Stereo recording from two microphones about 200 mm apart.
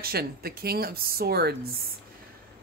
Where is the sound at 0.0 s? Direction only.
50° right (ahead or behind).